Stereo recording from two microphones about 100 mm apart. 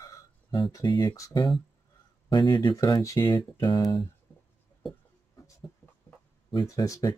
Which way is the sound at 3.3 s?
50° left (ahead or behind).